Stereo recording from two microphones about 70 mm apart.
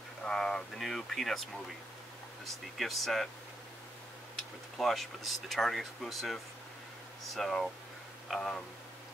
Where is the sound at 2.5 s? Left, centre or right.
Centre.